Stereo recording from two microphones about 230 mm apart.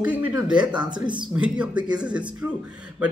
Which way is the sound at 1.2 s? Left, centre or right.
Centre.